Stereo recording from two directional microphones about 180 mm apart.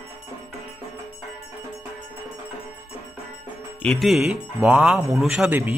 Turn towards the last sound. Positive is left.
turn(degrees=-5)  # may be behind; listen again after turning